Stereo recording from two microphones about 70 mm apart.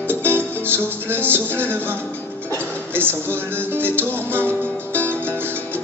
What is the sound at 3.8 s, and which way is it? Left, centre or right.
Speech, right.